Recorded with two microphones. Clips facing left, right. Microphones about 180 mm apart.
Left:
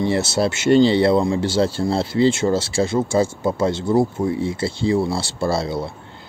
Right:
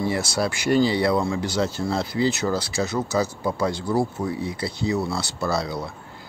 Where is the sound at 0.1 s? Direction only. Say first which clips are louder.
Left 5 dB; 25° left (ahead or behind).